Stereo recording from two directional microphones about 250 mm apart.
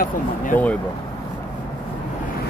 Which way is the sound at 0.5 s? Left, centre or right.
Centre.